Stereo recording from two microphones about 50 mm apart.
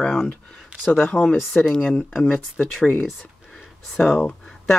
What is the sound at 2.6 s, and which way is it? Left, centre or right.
Speech, centre.